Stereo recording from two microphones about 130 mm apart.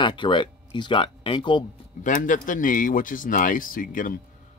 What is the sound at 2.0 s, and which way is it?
Speech, 85° left.